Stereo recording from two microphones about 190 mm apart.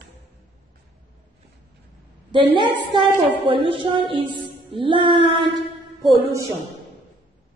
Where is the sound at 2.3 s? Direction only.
25° right (ahead or behind).